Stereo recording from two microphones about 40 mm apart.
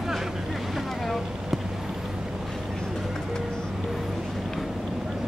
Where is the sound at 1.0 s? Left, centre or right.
Centre.